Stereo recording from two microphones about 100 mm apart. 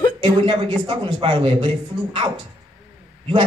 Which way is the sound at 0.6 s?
60° right (ahead or behind).